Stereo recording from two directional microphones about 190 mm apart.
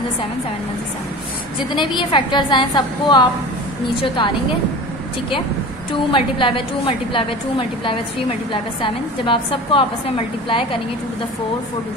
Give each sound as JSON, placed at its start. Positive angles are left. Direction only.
{"t": 1.8, "sound": "a woman's voice", "side_deg": 25}
{"t": 6.1, "sound": "a woman's voice", "side_deg": 25}